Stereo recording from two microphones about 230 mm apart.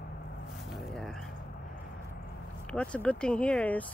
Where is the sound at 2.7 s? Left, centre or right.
Centre.